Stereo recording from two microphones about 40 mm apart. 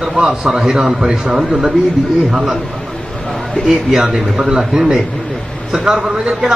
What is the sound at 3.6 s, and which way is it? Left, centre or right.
A man's voice, centre.